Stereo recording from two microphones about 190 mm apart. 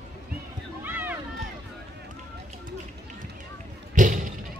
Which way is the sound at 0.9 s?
10° right (ahead or behind).